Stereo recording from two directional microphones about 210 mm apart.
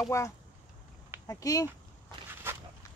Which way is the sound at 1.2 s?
15° left (ahead or behind).